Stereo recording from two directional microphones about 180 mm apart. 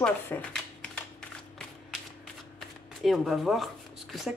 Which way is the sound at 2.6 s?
Centre (ahead or behind).